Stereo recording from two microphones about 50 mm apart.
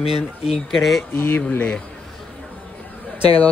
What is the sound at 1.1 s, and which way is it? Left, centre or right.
Speech, left.